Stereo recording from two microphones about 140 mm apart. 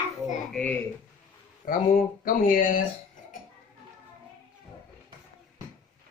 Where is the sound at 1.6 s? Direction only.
80° left.